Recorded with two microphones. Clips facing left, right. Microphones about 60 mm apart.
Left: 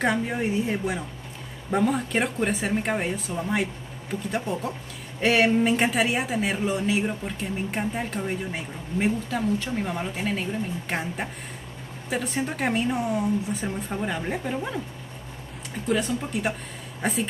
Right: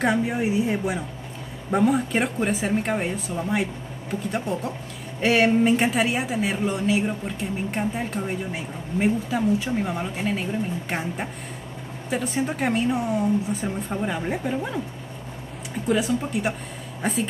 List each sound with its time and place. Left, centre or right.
0.0 s speech: centre
15.9 s speech: centre